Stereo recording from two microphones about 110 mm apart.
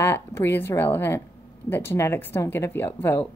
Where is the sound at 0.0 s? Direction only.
25° left (ahead or behind).